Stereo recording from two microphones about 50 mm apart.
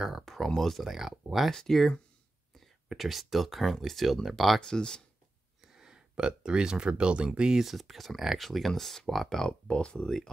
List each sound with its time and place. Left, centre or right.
0.2 s a sound: centre
0.6 s speech: centre
1.5 s speech: centre
2.9 s speech: centre
4.6 s speech: centre
5.7 s speech: centre
7.6 s speech: centre
9.5 s speech: left